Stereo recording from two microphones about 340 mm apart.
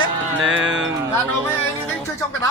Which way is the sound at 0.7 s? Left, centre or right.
Right.